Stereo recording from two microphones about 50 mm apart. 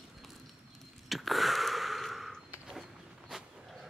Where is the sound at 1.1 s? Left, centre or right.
Centre.